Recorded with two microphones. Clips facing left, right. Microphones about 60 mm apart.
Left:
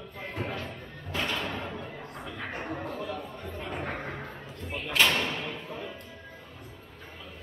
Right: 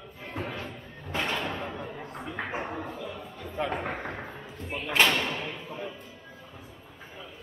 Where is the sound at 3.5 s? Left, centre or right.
Right.